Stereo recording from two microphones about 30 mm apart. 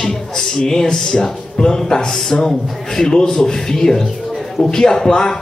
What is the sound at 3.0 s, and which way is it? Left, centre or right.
Speech, left.